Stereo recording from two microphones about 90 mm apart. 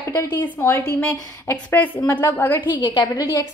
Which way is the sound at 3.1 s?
45° left (ahead or behind).